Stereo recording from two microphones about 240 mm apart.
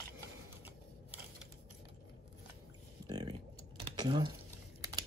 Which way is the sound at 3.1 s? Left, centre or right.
Centre.